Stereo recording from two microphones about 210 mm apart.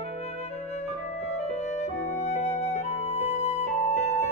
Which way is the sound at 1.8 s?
35° left (ahead or behind).